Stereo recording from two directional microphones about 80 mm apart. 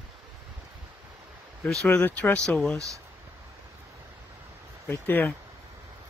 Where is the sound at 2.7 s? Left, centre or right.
Right.